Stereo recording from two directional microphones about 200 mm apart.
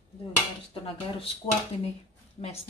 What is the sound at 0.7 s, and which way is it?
Speech, 25° left (ahead or behind).